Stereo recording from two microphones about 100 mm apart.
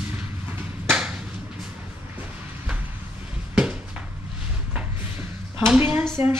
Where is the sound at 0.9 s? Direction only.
10° right (ahead or behind).